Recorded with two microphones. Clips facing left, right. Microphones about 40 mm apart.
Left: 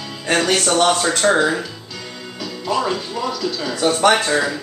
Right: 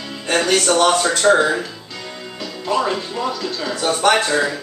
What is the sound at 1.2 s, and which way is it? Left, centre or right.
Speech, centre.